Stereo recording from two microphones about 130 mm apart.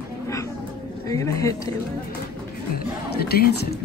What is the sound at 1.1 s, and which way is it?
Speech, 25° left (ahead or behind).